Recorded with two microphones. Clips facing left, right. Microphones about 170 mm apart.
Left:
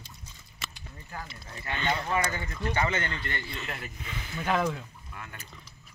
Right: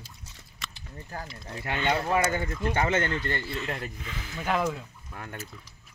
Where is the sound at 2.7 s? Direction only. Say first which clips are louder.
Right 3 dB; 50° right (ahead or behind).